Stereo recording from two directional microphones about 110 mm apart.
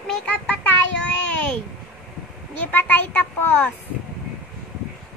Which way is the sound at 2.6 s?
15° left (ahead or behind).